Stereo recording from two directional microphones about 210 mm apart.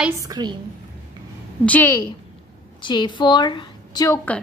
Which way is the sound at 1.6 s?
10° left (ahead or behind).